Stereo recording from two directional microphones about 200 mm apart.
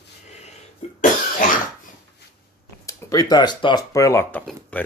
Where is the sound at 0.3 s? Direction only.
35° left (ahead or behind).